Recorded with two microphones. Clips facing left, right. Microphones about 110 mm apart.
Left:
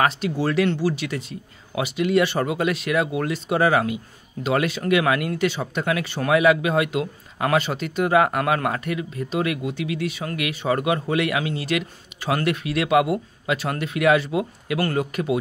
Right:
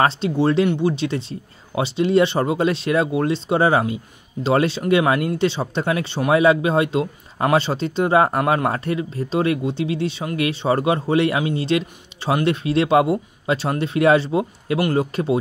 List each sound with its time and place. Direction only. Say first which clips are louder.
0.0 s speech: right 4 dB; 30° right (ahead or behind)